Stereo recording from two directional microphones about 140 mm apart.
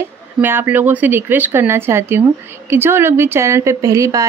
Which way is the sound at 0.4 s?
15° right (ahead or behind).